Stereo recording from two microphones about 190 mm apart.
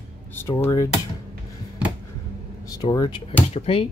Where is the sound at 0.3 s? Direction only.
15° left (ahead or behind).